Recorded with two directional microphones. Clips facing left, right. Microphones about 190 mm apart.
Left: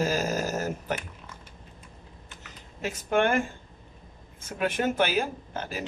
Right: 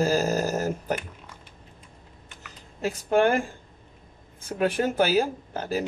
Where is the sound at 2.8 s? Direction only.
35° right (ahead or behind).